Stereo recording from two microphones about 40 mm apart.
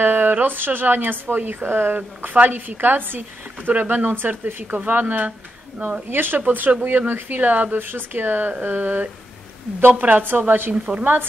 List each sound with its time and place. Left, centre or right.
0.0 s speech: right
2.0 s speech: right
3.9 s speech: right
5.8 s speech: right
6.0 s speech: right
6.4 s speech: right
10.2 s speech: right